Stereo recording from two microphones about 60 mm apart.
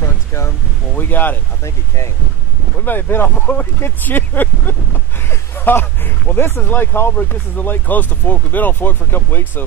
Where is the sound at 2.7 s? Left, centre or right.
Left.